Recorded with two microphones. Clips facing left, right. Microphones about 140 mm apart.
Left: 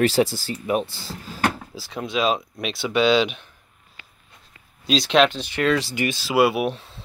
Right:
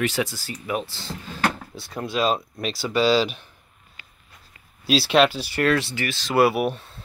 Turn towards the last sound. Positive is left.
turn(degrees=0)  # may be behind; listen again after turning